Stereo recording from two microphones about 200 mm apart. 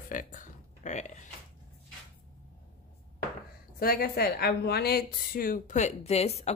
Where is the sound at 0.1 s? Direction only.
40° left (ahead or behind).